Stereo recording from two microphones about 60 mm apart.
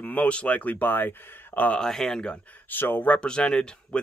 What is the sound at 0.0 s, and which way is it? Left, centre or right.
Speech, left.